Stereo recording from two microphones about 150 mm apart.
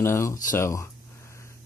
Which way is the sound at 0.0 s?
20° left (ahead or behind).